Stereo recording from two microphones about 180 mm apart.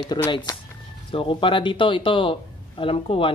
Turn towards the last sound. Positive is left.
turn(degrees=30)  # may be behind; listen again after turning